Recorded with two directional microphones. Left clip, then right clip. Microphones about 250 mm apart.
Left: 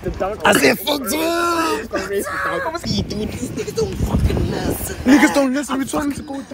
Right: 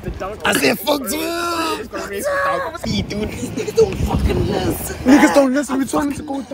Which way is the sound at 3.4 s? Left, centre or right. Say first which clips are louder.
Right 8 dB; centre.